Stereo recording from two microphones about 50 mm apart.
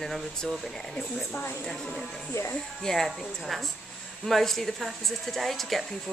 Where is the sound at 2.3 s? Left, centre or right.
Left.